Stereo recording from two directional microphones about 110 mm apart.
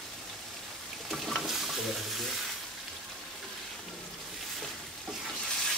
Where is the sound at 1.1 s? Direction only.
Centre (ahead or behind).